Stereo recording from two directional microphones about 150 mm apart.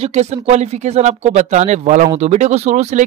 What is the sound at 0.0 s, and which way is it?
Speech, 45° right (ahead or behind).